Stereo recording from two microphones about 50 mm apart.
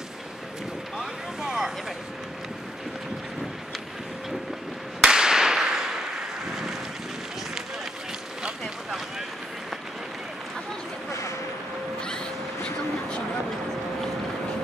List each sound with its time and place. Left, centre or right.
0.9 s boat: centre
5.0 s whip: centre